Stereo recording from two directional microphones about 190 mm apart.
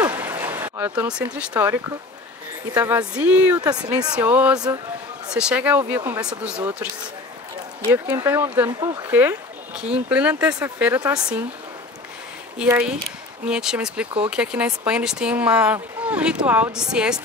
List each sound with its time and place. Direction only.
0.0 s a sound: 10° right (ahead or behind)
1.5 s speech: 10° right (ahead or behind)
7.9 s speech: 10° right (ahead or behind)
8.6 s speech: 20° right (ahead or behind)
9.1 s a sound: 10° right (ahead or behind)
10.0 s speech: 5° right (ahead or behind)
12.5 s speech: 5° right (ahead or behind)